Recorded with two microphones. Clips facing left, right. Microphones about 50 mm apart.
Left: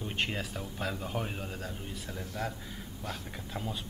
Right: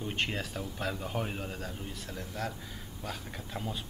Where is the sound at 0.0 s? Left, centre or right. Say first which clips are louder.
Even; centre.